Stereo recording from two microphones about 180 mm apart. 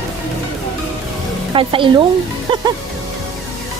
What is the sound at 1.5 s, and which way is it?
Speech, 30° right (ahead or behind).